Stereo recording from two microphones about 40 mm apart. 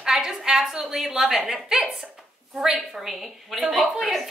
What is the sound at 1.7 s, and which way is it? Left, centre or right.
A woman's voice, centre.